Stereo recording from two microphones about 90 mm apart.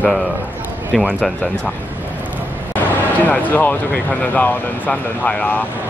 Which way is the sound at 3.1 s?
20° left (ahead or behind).